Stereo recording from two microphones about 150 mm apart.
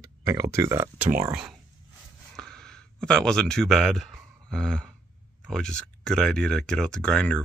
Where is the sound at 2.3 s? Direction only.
5° left (ahead or behind).